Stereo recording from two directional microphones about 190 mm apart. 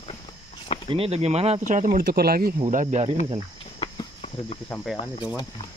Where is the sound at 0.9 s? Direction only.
30° right (ahead or behind).